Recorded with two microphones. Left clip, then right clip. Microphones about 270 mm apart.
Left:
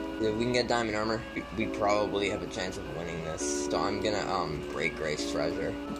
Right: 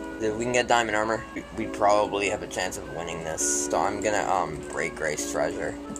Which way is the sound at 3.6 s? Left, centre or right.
Right.